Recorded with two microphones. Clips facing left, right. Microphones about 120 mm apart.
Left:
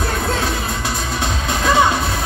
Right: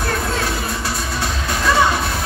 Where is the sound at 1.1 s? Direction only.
20° left (ahead or behind).